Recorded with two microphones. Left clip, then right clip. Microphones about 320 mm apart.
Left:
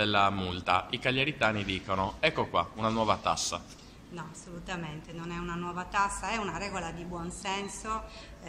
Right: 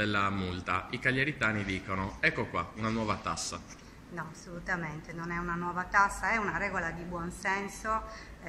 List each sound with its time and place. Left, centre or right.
0.0 s a woman's voice: centre